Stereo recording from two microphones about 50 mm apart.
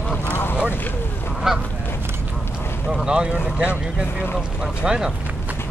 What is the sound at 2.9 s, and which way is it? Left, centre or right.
Speech, centre.